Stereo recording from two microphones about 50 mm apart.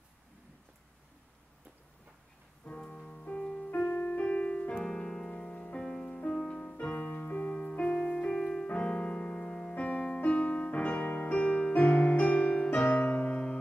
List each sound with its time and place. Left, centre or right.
2.7 s music: centre
3.7 s piano: left
4.8 s music: centre